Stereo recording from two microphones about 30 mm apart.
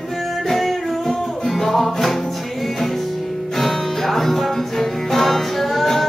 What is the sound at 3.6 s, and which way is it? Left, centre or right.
Music, centre.